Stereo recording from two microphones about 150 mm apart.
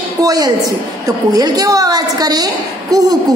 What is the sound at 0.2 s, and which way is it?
A woman's voice, 25° right (ahead or behind).